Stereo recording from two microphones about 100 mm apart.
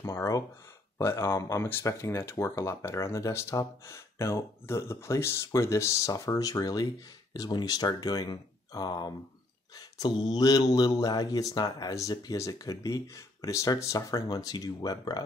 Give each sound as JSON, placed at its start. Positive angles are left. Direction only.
{"t": 0.0, "sound": "speech", "side_deg": 30}